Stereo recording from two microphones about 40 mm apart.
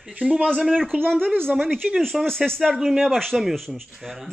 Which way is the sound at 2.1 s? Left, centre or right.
Centre.